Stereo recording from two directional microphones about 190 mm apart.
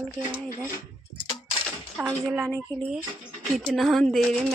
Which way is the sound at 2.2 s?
10° right (ahead or behind).